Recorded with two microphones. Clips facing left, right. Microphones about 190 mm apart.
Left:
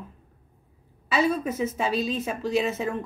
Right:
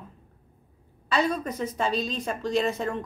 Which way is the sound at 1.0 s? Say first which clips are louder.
Left 2 dB; 5° left (ahead or behind).